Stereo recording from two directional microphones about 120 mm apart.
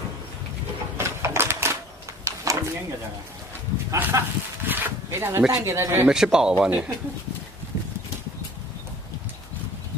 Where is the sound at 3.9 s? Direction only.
15° right (ahead or behind).